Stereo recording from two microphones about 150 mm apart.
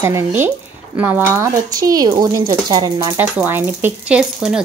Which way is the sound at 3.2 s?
15° right (ahead or behind).